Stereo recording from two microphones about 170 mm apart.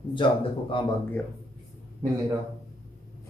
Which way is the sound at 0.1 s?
30° left (ahead or behind).